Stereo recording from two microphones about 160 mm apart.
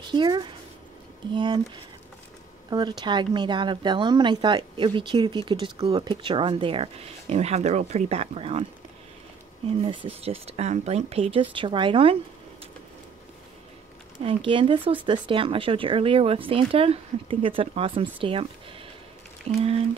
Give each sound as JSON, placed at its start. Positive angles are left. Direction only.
{"t": 0.1, "sound": "speech", "side_deg": -30}
{"t": 2.7, "sound": "speech", "side_deg": -25}
{"t": 9.8, "sound": "speech", "side_deg": -35}
{"t": 14.2, "sound": "speech", "side_deg": -35}